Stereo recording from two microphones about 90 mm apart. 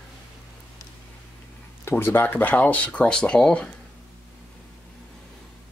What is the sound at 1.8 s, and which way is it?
Speech, 25° left (ahead or behind).